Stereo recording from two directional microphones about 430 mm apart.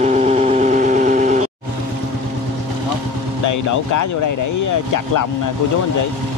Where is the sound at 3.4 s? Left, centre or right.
Left.